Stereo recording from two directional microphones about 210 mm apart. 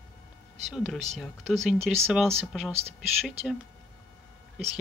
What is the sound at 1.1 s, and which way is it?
Speech, centre (ahead or behind).